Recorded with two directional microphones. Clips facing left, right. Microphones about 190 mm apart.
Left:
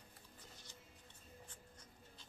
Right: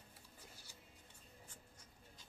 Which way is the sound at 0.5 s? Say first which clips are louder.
Left 2 dB; 10° right (ahead or behind).